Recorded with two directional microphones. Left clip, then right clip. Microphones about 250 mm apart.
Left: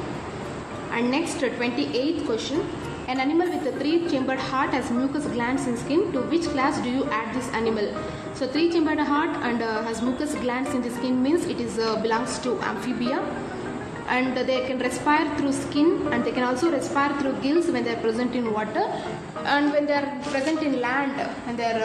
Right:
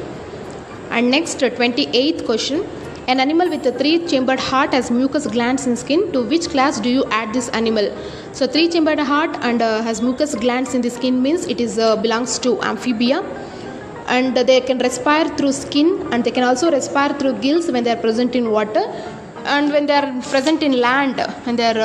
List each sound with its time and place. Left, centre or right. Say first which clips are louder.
0.9 s a woman's voice: right 8 dB; right